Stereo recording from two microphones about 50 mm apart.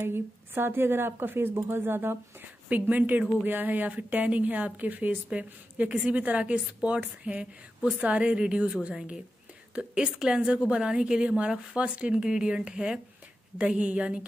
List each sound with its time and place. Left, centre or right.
0.0 s a woman's voice: right
2.7 s a woman's voice: right; by 13.0 s centre
13.6 s a woman's voice: right